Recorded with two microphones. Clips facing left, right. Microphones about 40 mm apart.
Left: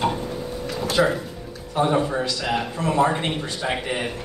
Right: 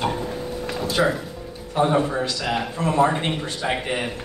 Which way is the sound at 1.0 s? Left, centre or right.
Centre.